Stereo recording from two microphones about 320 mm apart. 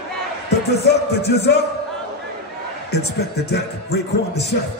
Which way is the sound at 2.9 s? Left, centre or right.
Left.